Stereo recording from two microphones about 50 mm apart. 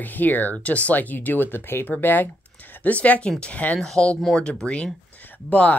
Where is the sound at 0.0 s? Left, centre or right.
Left.